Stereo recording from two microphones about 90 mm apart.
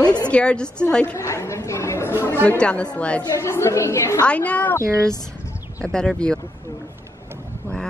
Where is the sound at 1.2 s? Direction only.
35° left (ahead or behind).